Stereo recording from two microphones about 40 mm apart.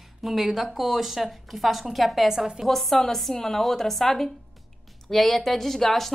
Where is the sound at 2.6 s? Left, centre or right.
Centre.